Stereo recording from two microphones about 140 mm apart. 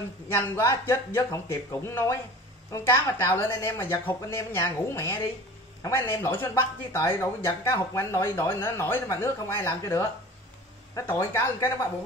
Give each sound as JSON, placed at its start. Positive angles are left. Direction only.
{"t": 0.3, "sound": "a woman's voice", "side_deg": 15}